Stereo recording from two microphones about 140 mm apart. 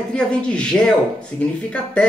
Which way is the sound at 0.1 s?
10° left (ahead or behind).